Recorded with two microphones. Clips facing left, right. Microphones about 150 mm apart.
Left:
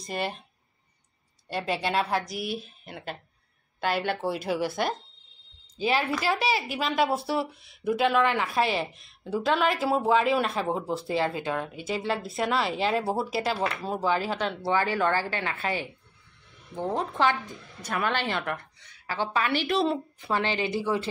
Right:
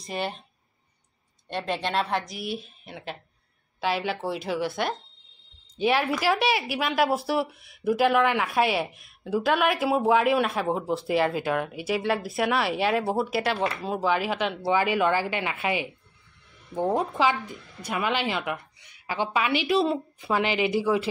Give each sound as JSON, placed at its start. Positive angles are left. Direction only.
{"t": 0.0, "sound": "speech", "side_deg": 0}
{"t": 1.5, "sound": "speech", "side_deg": 5}
{"t": 11.1, "sound": "speech", "side_deg": 25}
{"t": 11.4, "sound": "speech", "side_deg": -10}
{"t": 16.9, "sound": "speech", "side_deg": -5}